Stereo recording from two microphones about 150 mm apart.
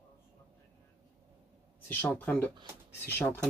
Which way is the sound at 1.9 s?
10° left (ahead or behind).